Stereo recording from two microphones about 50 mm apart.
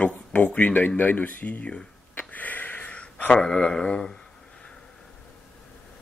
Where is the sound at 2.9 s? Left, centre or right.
Left.